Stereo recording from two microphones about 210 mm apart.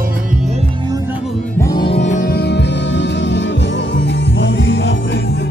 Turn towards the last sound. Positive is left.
turn(degrees=60)  # may be behind; listen again after turning